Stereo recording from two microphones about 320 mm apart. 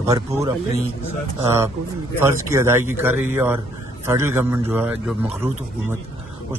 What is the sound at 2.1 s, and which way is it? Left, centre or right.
A man's voice, centre.